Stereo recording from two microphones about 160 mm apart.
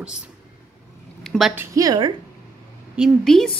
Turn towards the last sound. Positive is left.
turn(degrees=5)  # may be behind; listen again after turning